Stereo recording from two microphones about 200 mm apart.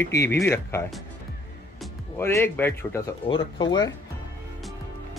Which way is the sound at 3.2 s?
25° left (ahead or behind).